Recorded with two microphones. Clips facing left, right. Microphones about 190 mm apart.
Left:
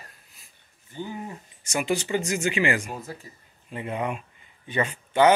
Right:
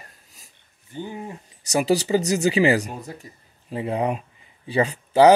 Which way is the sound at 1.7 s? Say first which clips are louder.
Right 6 dB; 35° right (ahead or behind).